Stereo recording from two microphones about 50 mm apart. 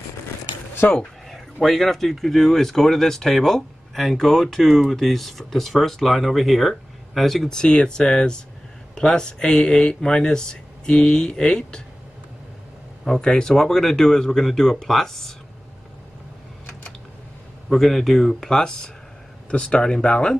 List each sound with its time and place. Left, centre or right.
0.9 s speech: centre
13.0 s speech: centre
17.6 s speech: centre